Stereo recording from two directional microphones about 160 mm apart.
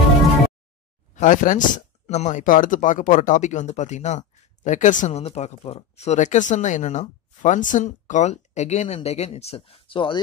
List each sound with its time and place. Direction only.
1.1 s speech: 50° left (ahead or behind); by 10.2 s 30° left (ahead or behind)